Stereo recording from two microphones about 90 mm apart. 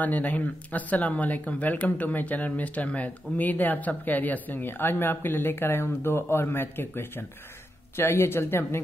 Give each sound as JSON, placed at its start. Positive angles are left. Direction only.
{"t": 0.0, "sound": "speech", "side_deg": 20}